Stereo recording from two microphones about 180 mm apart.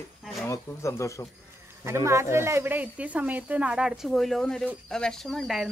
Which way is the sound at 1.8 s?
15° right (ahead or behind).